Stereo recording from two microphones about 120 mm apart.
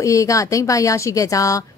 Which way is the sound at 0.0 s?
25° left (ahead or behind).